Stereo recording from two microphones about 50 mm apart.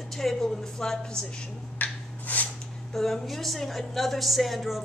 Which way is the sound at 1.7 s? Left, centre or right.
Left.